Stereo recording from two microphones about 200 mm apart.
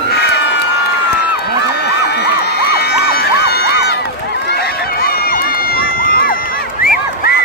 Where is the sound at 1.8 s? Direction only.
55° left (ahead or behind).